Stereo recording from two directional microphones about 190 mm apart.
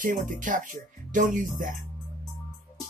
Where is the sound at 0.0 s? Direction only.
45° right (ahead or behind).